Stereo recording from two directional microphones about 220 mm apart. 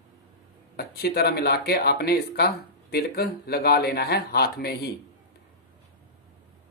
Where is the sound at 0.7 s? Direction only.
45° left (ahead or behind).